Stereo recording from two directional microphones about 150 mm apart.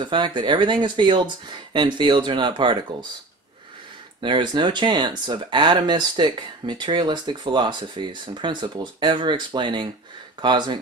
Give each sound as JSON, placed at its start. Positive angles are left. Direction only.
{"t": 0.0, "sound": "speech", "side_deg": -30}
{"t": 4.2, "sound": "speech", "side_deg": -35}